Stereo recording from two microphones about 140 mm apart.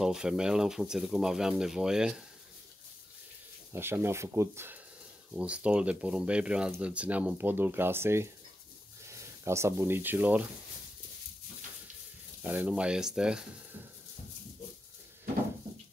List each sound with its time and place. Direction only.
0.0 s speech: 5° right (ahead or behind)
3.7 s speech: 15° right (ahead or behind)
12.4 s speech: 10° right (ahead or behind)